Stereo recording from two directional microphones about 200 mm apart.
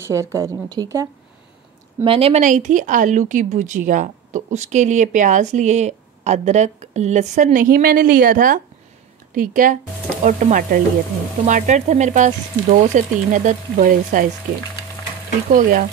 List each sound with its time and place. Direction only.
0.0 s a woman's voice: 15° right (ahead or behind)
2.0 s speech: 30° right (ahead or behind)
15.5 s speech: 40° right (ahead or behind)